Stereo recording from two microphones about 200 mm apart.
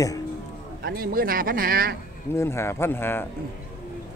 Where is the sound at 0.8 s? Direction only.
50° right (ahead or behind).